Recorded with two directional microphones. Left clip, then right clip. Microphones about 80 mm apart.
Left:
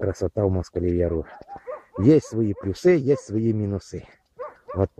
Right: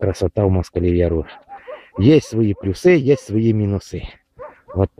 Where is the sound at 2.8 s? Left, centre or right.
Right.